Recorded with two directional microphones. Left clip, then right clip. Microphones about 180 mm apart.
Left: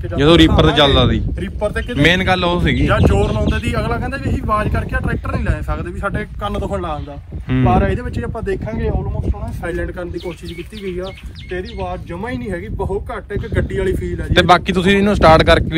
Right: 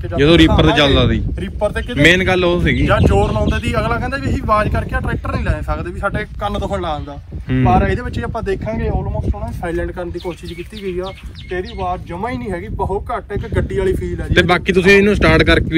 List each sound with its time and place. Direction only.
0.2 s speech: 15° left (ahead or behind)
1.4 s speech: centre (ahead or behind)
7.4 s speech: 10° left (ahead or behind)
7.7 s speech: centre (ahead or behind)
11.5 s speech: 10° right (ahead or behind)
14.3 s speech: 20° left (ahead or behind)